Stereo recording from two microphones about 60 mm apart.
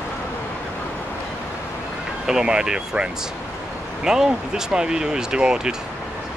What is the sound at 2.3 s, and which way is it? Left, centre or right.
Speech, centre.